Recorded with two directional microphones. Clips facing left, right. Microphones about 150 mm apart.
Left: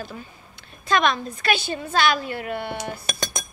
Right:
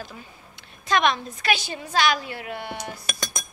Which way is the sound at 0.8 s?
20° right (ahead or behind).